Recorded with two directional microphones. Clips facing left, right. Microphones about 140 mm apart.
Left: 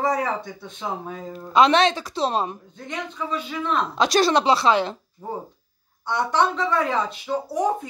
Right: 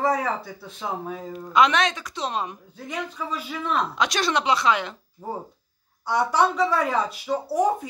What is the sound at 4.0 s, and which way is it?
A woman's voice, 35° left (ahead or behind).